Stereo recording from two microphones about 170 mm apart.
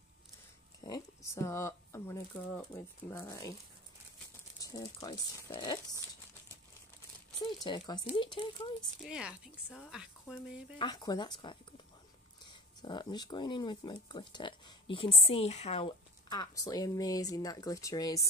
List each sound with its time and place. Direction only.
0.7 s speech: 20° left (ahead or behind)
4.6 s speech: 20° left (ahead or behind)
7.6 s speech: 25° left (ahead or behind)
9.0 s speech: 5° right (ahead or behind)
10.8 s speech: 25° left (ahead or behind)
16.3 s speech: 20° left (ahead or behind)